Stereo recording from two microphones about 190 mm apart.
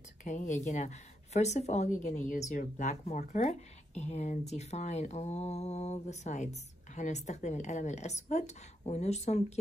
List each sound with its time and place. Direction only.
0.2 s a woman's voice: 40° left (ahead or behind)